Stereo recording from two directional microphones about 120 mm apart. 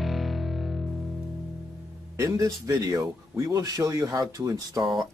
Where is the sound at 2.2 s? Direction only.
30° right (ahead or behind).